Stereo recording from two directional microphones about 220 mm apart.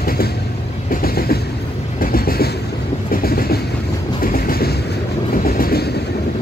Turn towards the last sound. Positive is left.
turn(degrees=45)  # may be behind; listen again after turning